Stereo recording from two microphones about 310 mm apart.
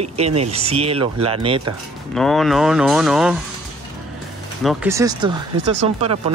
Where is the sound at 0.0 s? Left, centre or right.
Centre.